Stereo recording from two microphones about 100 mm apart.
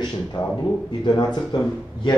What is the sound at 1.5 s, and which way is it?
Speech, 55° left (ahead or behind).